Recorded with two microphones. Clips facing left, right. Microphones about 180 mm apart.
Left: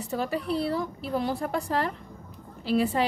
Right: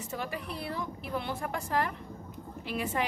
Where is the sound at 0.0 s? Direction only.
35° left (ahead or behind).